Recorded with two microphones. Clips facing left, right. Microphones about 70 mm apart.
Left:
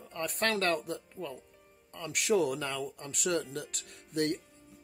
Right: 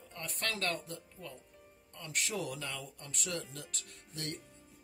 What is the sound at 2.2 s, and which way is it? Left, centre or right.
Speech, left.